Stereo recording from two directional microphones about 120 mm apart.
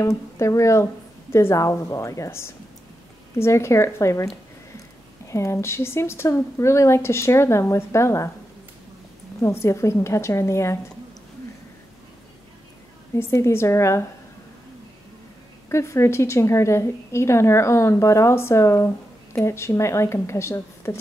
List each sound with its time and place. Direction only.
0.0 s a woman's voice: 25° left (ahead or behind)
5.3 s a woman's voice: 25° left (ahead or behind)
9.4 s a woman's voice: 25° left (ahead or behind)
13.1 s a woman's voice: 20° left (ahead or behind)
15.7 s a woman's voice: 25° left (ahead or behind)